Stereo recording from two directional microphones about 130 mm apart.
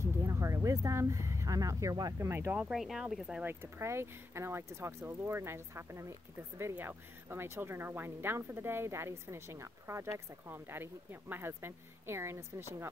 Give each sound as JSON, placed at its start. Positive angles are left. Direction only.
{"t": 0.0, "sound": "speech", "side_deg": -20}
{"t": 2.6, "sound": "speech", "side_deg": 0}
{"t": 3.4, "sound": "speech", "side_deg": -20}